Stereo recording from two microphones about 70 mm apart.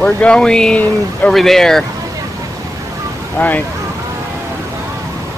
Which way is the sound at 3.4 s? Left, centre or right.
Left.